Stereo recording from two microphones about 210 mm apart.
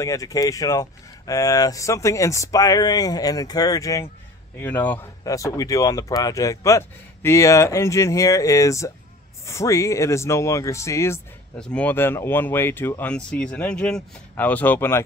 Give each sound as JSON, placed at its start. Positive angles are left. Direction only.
{"t": 0.0, "sound": "speech", "side_deg": 15}